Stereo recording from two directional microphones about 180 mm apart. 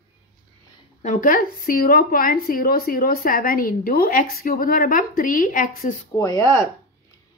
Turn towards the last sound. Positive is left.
turn(degrees=15)  # may be behind; listen again after turning